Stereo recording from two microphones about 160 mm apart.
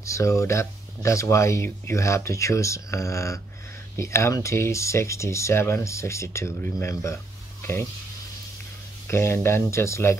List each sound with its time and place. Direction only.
0.0 s speech: 20° left (ahead or behind)
9.0 s speech: 15° left (ahead or behind)